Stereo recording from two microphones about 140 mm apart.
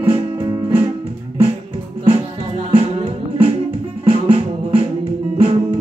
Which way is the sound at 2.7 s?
40° right (ahead or behind).